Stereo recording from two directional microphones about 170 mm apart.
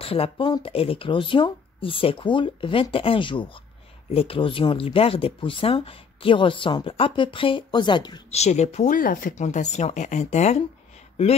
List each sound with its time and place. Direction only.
0.0 s speech: 35° left (ahead or behind)
8.3 s speech: 40° left (ahead or behind)